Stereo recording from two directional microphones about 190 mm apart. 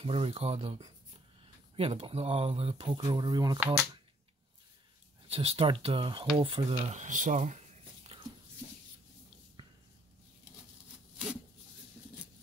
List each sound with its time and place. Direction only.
0.0 s speech: 30° right (ahead or behind)
3.5 s speech: 5° right (ahead or behind)
5.3 s speech: 30° right (ahead or behind)
9.6 s a sound: 25° right (ahead or behind)